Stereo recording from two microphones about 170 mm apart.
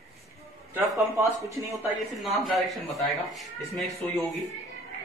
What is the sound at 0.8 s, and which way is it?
Speech, 15° right (ahead or behind).